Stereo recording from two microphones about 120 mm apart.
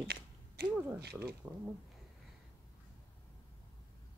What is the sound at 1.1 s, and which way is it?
Speech, 5° right (ahead or behind).